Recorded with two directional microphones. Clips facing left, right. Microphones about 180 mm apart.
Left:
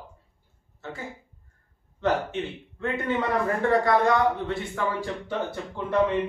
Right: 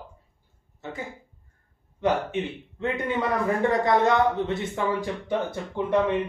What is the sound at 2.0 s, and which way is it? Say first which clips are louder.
Speech: right 1 dB; 15° right (ahead or behind).